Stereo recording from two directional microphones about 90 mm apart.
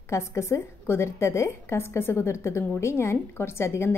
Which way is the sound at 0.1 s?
30° left (ahead or behind).